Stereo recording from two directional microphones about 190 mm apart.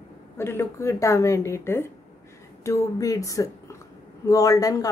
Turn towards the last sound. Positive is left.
turn(degrees=20)  # may be behind; listen again after turning